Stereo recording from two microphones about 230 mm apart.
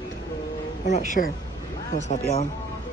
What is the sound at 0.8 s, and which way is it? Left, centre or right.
Speech, left.